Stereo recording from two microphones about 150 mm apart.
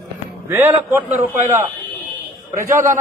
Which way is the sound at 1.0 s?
15° right (ahead or behind).